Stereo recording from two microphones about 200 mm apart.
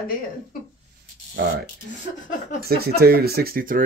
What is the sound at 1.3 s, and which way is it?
Speech, 55° right (ahead or behind).